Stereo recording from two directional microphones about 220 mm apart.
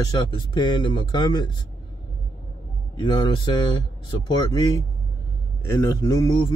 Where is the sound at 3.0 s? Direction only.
20° left (ahead or behind).